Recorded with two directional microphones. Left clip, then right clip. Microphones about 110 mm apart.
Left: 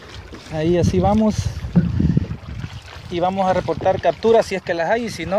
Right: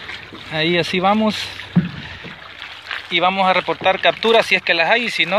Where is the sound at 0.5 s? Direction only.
80° left.